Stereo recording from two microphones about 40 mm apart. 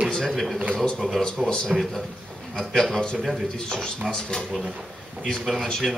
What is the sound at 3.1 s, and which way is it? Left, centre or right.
Speech, centre.